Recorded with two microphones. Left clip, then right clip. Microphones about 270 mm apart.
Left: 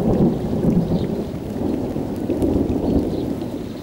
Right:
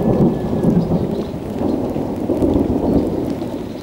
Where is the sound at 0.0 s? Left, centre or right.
Right.